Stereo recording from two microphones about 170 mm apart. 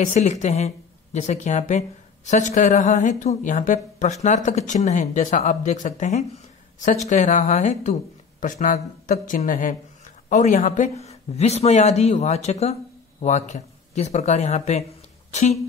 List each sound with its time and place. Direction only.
0.0 s speech: 45° left (ahead or behind)